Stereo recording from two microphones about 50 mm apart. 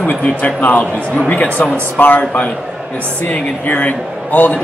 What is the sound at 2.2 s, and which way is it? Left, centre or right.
A man's voice, left.